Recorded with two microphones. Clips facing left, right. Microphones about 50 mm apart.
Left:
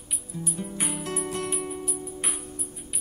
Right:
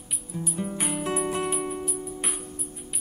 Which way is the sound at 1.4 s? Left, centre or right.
Centre.